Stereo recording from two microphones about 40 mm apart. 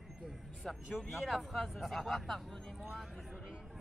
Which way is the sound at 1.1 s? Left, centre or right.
Centre.